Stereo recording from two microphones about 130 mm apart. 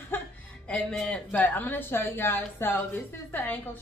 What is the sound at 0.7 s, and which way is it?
Speech, 5° left (ahead or behind).